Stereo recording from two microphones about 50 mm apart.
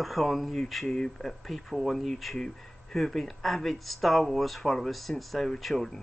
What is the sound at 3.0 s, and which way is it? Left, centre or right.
Speech, centre.